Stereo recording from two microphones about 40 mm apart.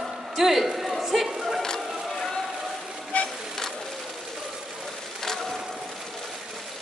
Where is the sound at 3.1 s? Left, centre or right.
Left.